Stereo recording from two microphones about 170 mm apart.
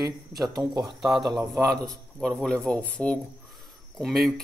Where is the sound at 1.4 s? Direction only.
15° right (ahead or behind).